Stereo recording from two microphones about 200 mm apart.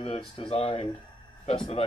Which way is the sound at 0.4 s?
25° left (ahead or behind).